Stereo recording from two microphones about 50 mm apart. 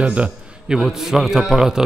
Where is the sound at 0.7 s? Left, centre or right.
Centre.